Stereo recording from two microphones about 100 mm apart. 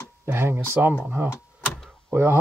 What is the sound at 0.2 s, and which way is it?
Speech, 25° right (ahead or behind).